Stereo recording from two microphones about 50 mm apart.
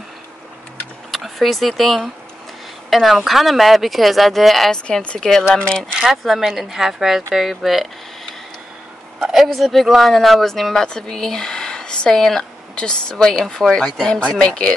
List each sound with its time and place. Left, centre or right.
1.1 s speech: centre
4.8 s a woman's voice: left
6.2 s a woman's voice: centre
9.2 s speech: centre
12.7 s speech: centre